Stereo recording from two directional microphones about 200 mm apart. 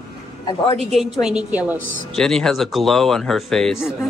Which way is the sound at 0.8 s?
Centre (ahead or behind).